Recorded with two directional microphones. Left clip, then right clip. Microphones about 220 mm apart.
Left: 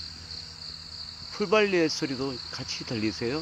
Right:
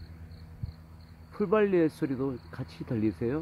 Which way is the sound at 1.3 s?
Centre (ahead or behind).